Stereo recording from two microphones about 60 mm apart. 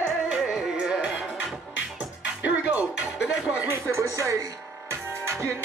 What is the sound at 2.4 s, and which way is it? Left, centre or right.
Music, right.